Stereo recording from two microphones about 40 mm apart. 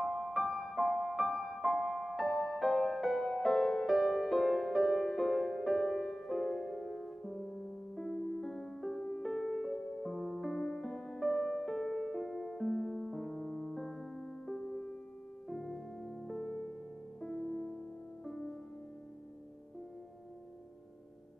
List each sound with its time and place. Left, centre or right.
0.0 s music: centre
11.7 s music: centre
14.5 s music: centre
15.5 s music: centre